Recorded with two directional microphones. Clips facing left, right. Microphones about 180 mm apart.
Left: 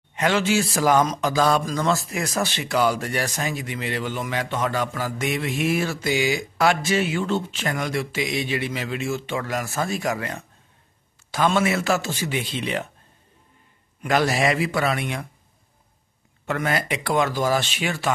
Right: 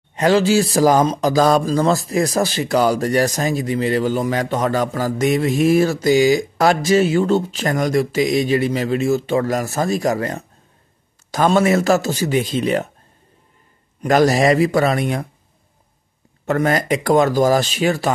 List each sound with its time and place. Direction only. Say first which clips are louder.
0.1 s speech: right 7 dB; 35° right (ahead or behind)
14.0 s speech: right 7 dB; 40° right (ahead or behind)
16.4 s speech: right 7 dB; 40° right (ahead or behind)